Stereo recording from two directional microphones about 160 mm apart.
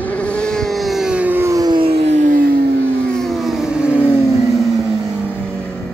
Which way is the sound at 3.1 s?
Centre (ahead or behind).